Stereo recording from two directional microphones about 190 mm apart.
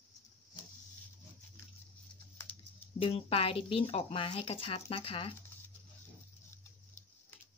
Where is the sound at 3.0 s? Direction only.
30° left (ahead or behind).